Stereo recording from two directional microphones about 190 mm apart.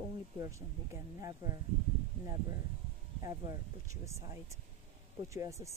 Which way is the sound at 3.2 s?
15° right (ahead or behind).